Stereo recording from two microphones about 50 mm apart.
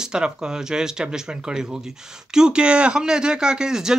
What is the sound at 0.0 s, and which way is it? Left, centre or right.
Speech, centre.